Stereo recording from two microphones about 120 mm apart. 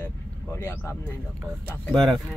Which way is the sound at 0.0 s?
20° left (ahead or behind).